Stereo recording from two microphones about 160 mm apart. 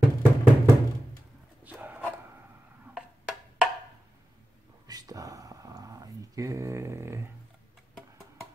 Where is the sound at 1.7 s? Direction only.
10° right (ahead or behind).